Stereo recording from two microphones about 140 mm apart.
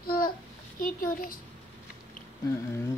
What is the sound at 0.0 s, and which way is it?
Child singing, 90° left.